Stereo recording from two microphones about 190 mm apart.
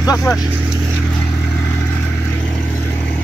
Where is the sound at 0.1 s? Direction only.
15° left (ahead or behind).